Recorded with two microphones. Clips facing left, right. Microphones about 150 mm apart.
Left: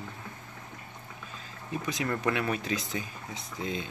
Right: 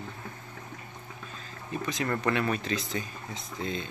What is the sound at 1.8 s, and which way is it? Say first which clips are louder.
Speech: right 1 dB; 5° left (ahead or behind).